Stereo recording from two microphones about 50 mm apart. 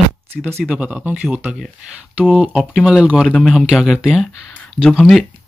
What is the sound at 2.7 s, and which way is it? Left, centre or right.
Speech, centre.